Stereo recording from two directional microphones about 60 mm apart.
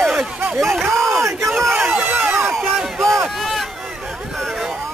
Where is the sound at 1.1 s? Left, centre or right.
Right.